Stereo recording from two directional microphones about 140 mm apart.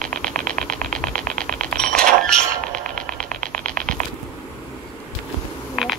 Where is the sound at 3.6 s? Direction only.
70° right (ahead or behind).